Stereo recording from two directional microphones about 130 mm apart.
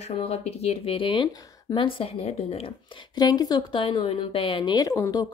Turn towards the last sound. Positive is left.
turn(degrees=25)  # may be behind; listen again after turning